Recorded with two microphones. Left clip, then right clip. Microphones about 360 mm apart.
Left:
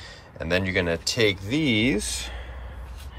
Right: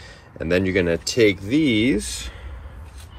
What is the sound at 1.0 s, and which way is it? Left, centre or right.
Speech, centre.